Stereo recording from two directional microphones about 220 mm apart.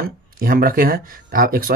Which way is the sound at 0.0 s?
40° right (ahead or behind).